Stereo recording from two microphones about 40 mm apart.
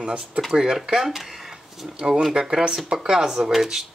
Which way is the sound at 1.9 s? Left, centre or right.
Right.